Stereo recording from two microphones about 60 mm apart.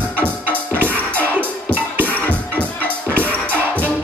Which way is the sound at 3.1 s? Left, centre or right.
Right.